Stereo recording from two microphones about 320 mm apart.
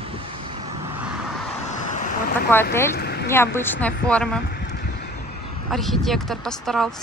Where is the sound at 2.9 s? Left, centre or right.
Left.